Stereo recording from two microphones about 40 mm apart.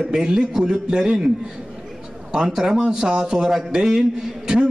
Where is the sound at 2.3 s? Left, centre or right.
Centre.